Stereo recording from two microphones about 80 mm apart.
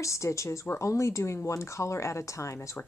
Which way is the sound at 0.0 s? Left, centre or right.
Left.